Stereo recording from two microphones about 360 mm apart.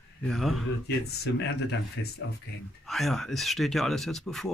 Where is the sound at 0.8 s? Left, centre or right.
Left.